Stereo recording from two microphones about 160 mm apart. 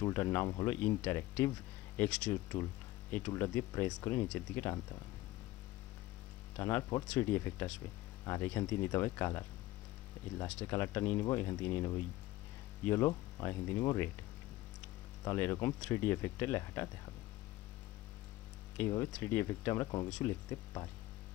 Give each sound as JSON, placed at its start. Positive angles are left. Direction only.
{"t": 0.0, "sound": "speech", "side_deg": 15}
{"t": 6.5, "sound": "speech", "side_deg": 15}
{"t": 10.4, "sound": "speech", "side_deg": 10}
{"t": 15.2, "sound": "speech", "side_deg": 15}
{"t": 18.8, "sound": "speech", "side_deg": 15}
{"t": 20.1, "sound": "speech", "side_deg": 10}